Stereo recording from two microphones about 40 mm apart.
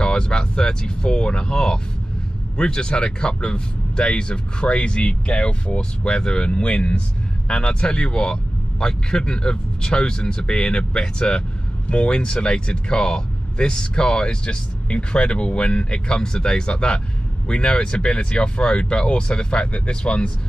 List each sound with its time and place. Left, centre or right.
0.0 s speech: left